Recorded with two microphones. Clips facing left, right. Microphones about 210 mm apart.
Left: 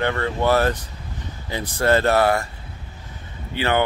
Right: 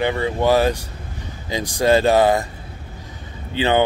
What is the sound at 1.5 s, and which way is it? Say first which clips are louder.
Speech: right 3 dB; 15° right (ahead or behind).